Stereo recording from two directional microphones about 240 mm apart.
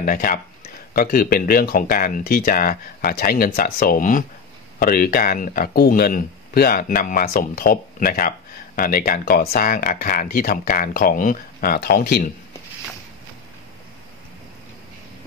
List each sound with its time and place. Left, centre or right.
0.0 s speech: left